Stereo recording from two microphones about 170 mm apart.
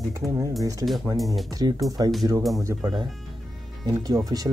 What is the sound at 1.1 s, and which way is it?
Speech, centre (ahead or behind).